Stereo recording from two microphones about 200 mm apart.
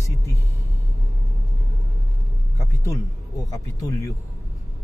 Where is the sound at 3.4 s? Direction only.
15° left (ahead or behind).